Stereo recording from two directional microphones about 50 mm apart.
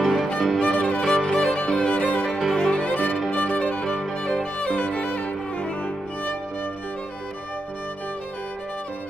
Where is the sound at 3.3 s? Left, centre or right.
Left.